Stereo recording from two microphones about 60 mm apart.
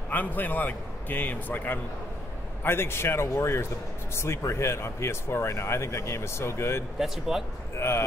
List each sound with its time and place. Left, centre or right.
0.1 s a man's voice: left
2.6 s speech: left
7.0 s speech: centre
7.7 s speech: left